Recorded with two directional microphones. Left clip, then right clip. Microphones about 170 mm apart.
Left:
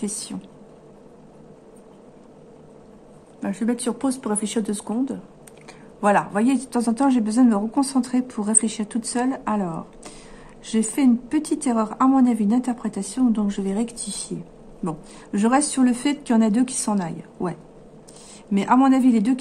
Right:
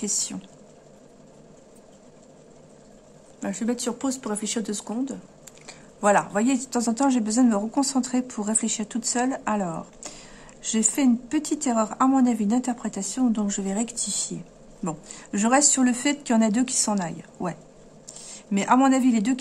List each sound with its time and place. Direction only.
0.0 s speech: 15° right (ahead or behind)
3.3 s speech: 10° right (ahead or behind)
5.7 s speech: 15° right (ahead or behind)